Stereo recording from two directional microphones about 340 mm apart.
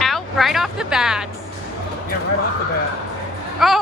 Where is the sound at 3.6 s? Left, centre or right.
Centre.